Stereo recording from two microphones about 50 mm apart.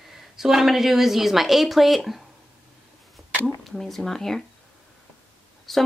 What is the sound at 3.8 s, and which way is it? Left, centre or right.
Speech, centre.